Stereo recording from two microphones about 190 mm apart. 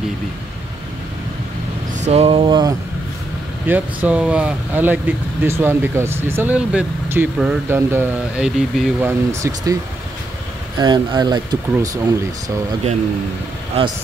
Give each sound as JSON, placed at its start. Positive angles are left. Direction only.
{"t": 2.0, "sound": "speech", "side_deg": -35}
{"t": 3.6, "sound": "speech", "side_deg": -10}
{"t": 9.3, "sound": "speech", "side_deg": -15}
{"t": 10.8, "sound": "speech", "side_deg": -20}